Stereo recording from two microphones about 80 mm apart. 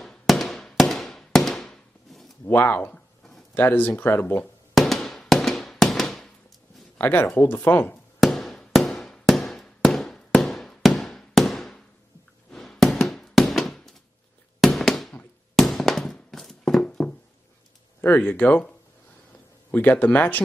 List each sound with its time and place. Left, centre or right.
0.0 s firecracker: centre
2.4 s speech: left
4.7 s a sound: centre
7.0 s speech: left
8.2 s fireworks: centre
12.4 s a sound: centre
14.6 s fireworks: centre
15.5 s a sound: centre
18.0 s speech: left
19.7 s speech: left